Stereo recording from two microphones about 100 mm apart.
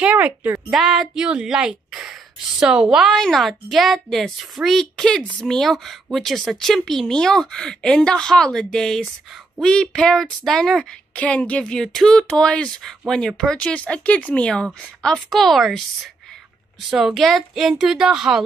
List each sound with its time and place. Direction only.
0.0 s a woman's voice: 15° right (ahead or behind)
0.7 s speech: 5° right (ahead or behind)
11.1 s speech: 15° left (ahead or behind)
16.9 s speech: centre (ahead or behind)